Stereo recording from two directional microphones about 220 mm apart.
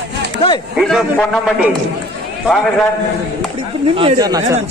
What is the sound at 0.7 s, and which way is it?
Speech, centre (ahead or behind).